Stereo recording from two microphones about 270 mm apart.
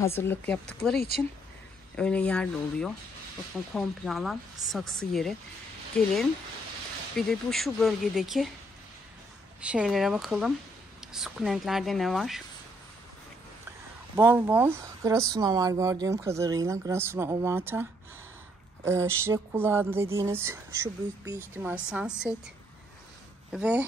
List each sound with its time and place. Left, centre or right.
0.0 s speech: centre
0.9 s speech: left
2.0 s speech: centre
7.2 s speech: centre
9.6 s speech: centre
14.1 s speech: centre
18.9 s speech: centre
23.5 s speech: centre